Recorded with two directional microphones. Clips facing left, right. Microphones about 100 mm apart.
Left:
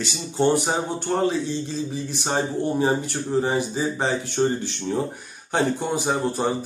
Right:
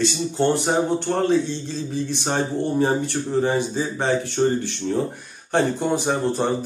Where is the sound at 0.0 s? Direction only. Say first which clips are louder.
Right 1 dB; 10° left (ahead or behind).